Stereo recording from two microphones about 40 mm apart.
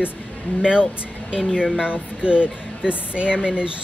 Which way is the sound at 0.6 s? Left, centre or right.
Right.